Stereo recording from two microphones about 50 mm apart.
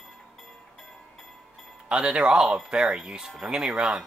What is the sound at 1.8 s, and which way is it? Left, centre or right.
Speech, centre.